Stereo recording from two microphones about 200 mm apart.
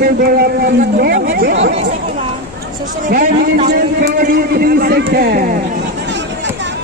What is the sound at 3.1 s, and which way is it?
A man's voice, 45° right (ahead or behind).